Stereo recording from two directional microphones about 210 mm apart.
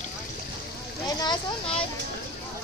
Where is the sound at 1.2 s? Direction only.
25° left (ahead or behind).